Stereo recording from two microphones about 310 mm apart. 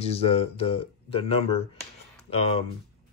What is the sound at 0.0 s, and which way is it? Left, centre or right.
Speech, centre.